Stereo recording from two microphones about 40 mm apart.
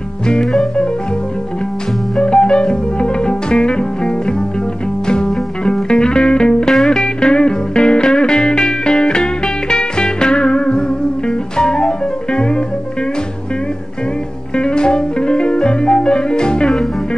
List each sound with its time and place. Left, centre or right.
2.1 s music: left
6.7 s music: centre
7.0 s music: left
14.6 s music: left